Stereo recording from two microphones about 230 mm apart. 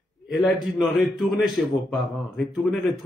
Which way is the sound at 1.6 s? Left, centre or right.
Centre.